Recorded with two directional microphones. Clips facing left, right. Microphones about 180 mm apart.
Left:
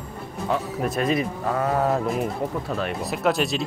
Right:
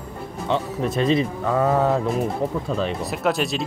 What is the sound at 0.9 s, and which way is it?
Speech, 25° right (ahead or behind).